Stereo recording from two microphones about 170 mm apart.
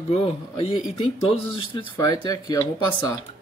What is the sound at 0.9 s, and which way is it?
Speech, 35° left (ahead or behind).